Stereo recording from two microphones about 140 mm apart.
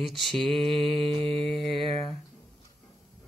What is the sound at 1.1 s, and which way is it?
Mantra, 40° right (ahead or behind).